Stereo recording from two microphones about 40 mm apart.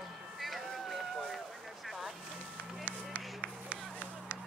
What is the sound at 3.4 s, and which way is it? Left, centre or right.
Run, right.